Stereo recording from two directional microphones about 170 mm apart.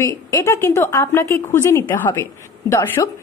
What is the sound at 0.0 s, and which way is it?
A woman's voice, 20° left (ahead or behind).